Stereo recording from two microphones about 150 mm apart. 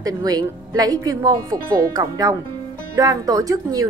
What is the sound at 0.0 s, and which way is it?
A woman's voice, 25° right (ahead or behind).